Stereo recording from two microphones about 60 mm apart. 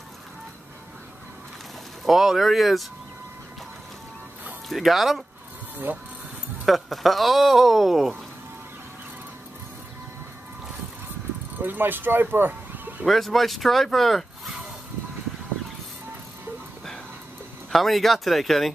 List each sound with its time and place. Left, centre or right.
2.0 s speech: centre
4.6 s speech: centre
5.9 s speech: right
6.6 s speech: centre
11.5 s speech: right
13.0 s speech: centre
17.6 s speech: centre